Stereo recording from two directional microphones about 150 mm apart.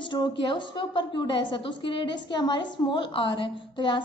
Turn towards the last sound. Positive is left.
turn(degrees=30)  # may be behind; listen again after turning